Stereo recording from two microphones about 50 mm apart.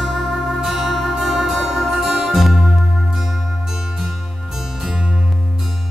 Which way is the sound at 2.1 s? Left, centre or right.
Centre.